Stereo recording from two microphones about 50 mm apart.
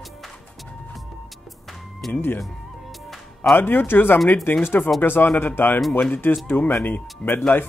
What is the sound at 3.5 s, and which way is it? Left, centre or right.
Speech, left.